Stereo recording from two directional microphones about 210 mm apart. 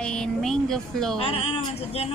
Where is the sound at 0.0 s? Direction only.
5° left (ahead or behind).